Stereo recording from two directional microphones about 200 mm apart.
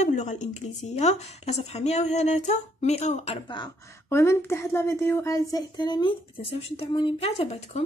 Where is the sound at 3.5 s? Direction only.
15° left (ahead or behind).